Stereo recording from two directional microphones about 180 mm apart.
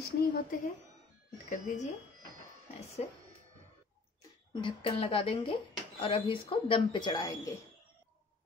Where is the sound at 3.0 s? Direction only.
35° left (ahead or behind).